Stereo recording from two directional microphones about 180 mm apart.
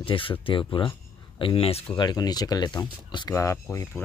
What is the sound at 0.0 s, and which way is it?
Speech, 30° left (ahead or behind).